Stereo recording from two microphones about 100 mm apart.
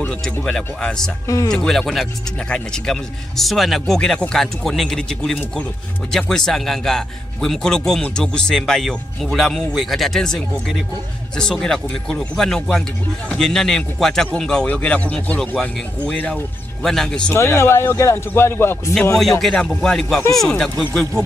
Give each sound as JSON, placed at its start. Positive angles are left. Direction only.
{"t": 0.0, "sound": "a man's voice", "side_deg": 15}
{"t": 1.2, "sound": "speech", "side_deg": 30}
{"t": 1.5, "sound": "a man's voice", "side_deg": 5}
{"t": 17.3, "sound": "a man's voice", "side_deg": 25}
{"t": 19.4, "sound": "a man's voice", "side_deg": 10}